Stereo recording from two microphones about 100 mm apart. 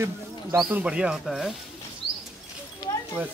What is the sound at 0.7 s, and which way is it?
Speech, 10° right (ahead or behind).